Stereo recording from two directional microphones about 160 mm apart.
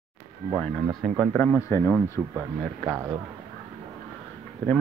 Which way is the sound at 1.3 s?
10° left (ahead or behind).